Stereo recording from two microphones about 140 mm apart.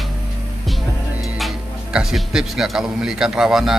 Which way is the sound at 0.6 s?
Centre (ahead or behind).